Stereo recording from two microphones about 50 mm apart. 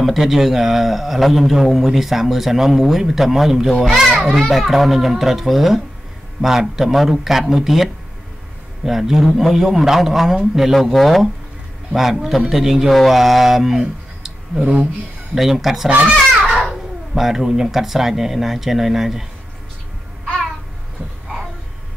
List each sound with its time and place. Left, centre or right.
0.0 s a man's voice: centre
14.6 s speech: right
15.3 s a man's voice: centre
17.1 s a man's voice: centre